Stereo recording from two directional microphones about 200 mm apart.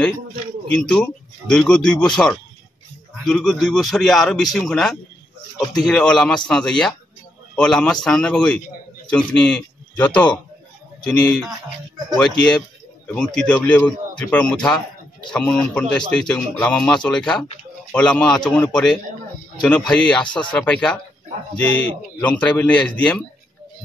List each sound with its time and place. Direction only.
0.7 s speech: 5° left (ahead or behind)
3.3 s speech: centre (ahead or behind)